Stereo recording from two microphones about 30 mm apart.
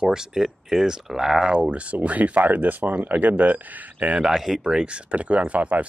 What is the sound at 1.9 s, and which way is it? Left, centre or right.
Speech, right.